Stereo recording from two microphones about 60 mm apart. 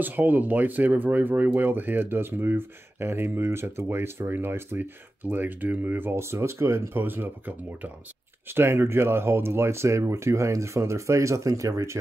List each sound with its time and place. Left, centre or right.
0.0 s speech: right
7.0 s speech: right
8.5 s speech: right